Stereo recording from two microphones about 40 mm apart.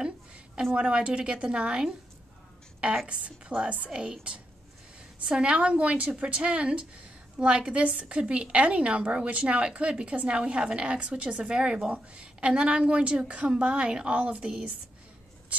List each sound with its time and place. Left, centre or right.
0.7 s a woman's voice: right
3.1 s a woman's voice: right